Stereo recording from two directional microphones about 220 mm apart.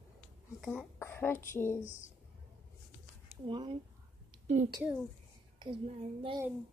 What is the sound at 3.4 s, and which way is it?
Speech, 20° right (ahead or behind).